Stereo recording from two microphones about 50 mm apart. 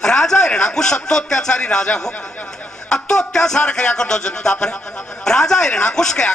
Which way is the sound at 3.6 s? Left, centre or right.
Left.